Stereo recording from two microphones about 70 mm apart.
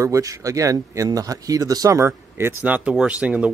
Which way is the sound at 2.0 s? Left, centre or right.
Right.